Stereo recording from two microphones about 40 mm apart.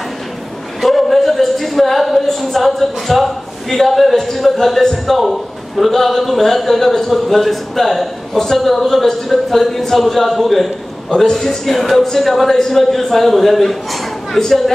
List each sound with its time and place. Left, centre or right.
0.8 s a man's voice: centre